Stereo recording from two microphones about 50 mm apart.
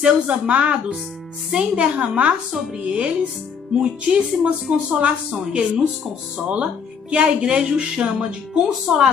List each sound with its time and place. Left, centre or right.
0.0 s speech: right